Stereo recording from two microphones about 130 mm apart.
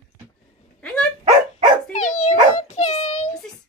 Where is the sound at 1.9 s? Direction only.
70° left (ahead or behind).